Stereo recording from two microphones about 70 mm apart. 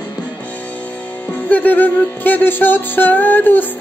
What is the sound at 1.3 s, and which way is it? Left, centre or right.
Music, left.